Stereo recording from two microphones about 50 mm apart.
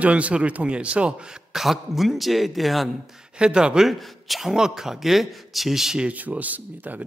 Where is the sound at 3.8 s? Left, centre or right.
Centre.